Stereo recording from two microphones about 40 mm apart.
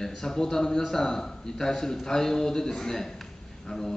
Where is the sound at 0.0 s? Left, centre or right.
Centre.